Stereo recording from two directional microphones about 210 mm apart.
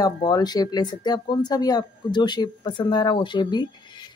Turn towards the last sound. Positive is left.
turn(degrees=20)  # may be behind; listen again after turning